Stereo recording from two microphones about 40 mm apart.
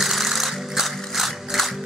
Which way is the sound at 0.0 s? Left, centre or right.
Centre.